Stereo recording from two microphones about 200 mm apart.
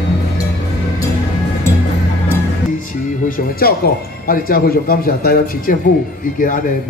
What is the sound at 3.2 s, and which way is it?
Music, 45° left (ahead or behind).